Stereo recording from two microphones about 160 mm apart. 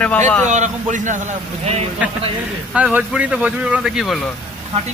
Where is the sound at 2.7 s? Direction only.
5° right (ahead or behind).